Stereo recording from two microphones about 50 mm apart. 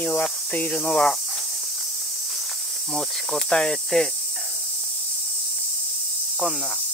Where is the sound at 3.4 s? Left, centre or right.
Centre.